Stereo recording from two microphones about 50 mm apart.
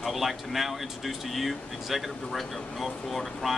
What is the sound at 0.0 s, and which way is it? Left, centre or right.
Speech, centre.